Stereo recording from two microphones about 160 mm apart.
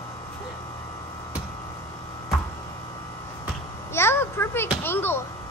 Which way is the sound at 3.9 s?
15° left (ahead or behind).